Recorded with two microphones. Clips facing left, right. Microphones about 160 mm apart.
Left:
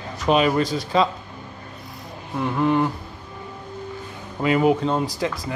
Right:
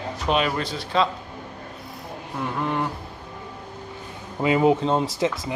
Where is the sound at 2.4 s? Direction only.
Centre (ahead or behind).